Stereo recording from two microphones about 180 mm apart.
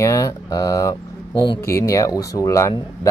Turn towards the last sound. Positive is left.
turn(degrees=20)  # may be behind; listen again after turning